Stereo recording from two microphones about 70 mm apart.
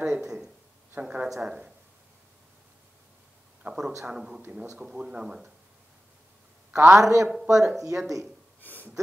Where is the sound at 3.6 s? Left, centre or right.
Centre.